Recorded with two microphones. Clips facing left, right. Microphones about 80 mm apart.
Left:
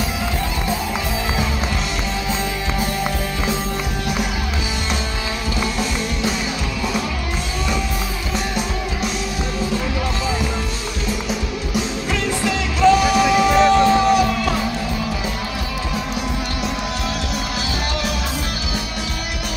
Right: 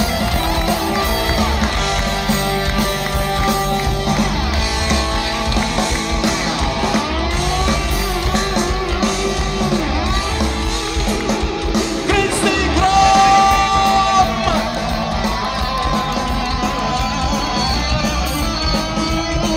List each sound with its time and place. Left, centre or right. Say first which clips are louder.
11.2 s music: right 5 dB; right